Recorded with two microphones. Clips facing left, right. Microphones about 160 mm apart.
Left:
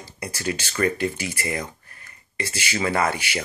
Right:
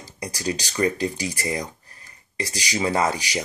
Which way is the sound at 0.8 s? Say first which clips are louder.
Even; 35° right (ahead or behind).